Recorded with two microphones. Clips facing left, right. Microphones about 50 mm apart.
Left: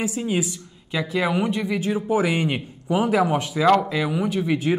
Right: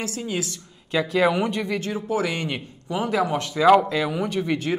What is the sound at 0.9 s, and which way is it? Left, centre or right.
Speech, centre.